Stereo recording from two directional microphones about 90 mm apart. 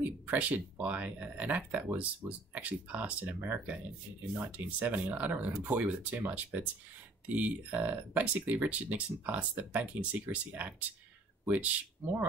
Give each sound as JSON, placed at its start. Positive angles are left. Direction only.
{"t": 0.3, "sound": "speech", "side_deg": -20}